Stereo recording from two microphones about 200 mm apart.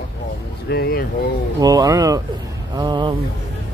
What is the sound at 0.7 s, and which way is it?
Speech, 50° left (ahead or behind).